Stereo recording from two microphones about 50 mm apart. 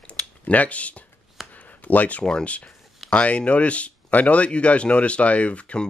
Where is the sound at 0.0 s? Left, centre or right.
Left.